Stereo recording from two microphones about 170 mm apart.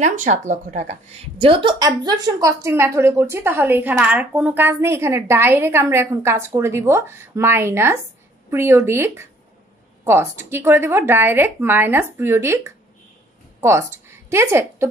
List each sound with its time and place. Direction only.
0.0 s speech: 45° right (ahead or behind)
1.4 s a woman's voice: 30° right (ahead or behind); by 14.9 s 15° right (ahead or behind)